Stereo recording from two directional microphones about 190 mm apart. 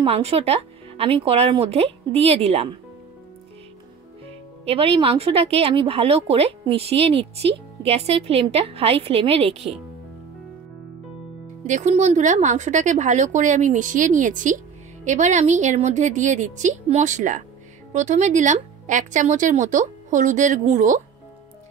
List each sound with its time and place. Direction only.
0.0 s a woman's voice: 30° right (ahead or behind)
4.6 s a woman's voice: 30° right (ahead or behind)
11.6 s a woman's voice: 40° right (ahead or behind)